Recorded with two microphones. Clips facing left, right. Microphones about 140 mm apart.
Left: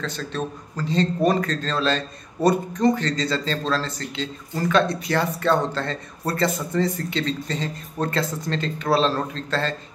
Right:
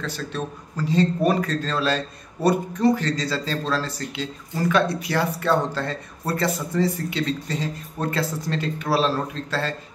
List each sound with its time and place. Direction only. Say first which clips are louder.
0.0 s a man's voice: left 1 dB; 10° right (ahead or behind)